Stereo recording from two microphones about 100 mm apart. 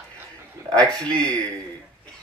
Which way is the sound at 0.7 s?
40° right (ahead or behind).